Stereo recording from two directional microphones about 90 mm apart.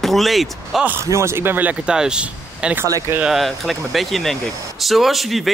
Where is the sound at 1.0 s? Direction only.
30° right (ahead or behind); by 2.8 s 10° right (ahead or behind).